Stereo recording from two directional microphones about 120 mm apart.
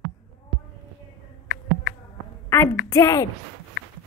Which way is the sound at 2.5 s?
20° left (ahead or behind).